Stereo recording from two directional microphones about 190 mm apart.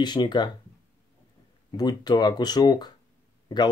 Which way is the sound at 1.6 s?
20° left (ahead or behind).